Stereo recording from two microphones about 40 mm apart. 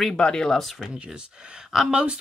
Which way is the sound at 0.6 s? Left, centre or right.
Centre.